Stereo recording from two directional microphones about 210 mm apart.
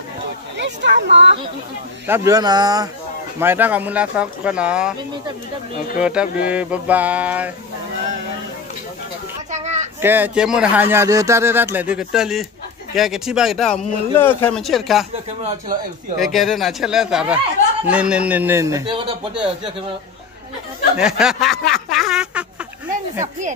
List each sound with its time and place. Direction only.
0.8 s speech: 55° right (ahead or behind)
2.0 s speech: 15° right (ahead or behind)
5.9 s speech: 5° right (ahead or behind)
9.5 s a sound: 35° right (ahead or behind)
10.0 s speech: 10° right (ahead or behind)
16.2 s speech: centre (ahead or behind)
21.0 s speech: 5° right (ahead or behind)